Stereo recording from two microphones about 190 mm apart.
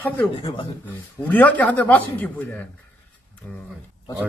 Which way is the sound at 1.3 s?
10° left (ahead or behind).